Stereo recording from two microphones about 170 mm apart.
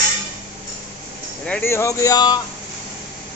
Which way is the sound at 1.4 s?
10° left (ahead or behind).